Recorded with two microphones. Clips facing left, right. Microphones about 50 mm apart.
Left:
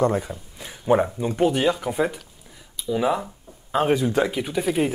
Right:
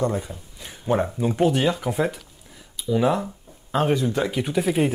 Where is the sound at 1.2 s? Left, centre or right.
Centre.